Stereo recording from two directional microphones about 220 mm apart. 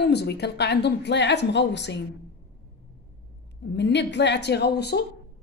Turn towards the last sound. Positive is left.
turn(degrees=50)  # may be behind; listen again after turning